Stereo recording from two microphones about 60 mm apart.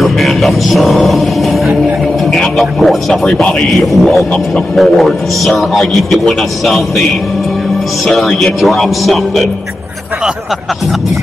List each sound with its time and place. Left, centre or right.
0.0 s music: centre
2.3 s a man's voice: centre
8.1 s a man's voice: centre